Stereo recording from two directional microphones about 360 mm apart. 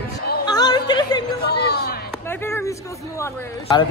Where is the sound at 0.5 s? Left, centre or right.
Centre.